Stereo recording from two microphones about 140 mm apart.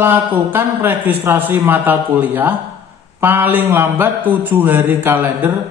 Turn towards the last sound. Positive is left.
turn(degrees=-15)  # may be behind; listen again after turning